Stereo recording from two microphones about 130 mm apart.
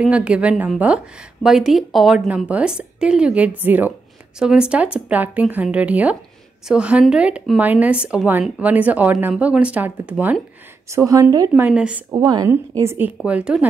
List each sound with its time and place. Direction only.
0.0 s a woman's voice: 10° right (ahead or behind)
10.9 s a woman's voice: 25° right (ahead or behind); by 12.0 s 10° right (ahead or behind)
12.1 s a woman's voice: 30° right (ahead or behind); by 13.7 s 10° right (ahead or behind)